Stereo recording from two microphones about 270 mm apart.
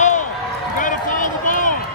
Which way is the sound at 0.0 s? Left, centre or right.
Left.